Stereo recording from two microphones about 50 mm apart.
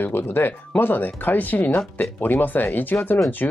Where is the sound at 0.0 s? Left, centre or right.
Left.